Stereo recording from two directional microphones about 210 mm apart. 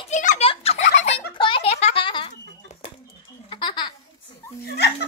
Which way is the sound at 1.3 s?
25° left (ahead or behind).